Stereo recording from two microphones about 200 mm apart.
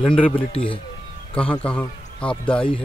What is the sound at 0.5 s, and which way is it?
Speech, 25° left (ahead or behind).